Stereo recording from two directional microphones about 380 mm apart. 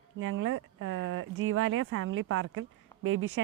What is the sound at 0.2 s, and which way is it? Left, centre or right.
Speech, right.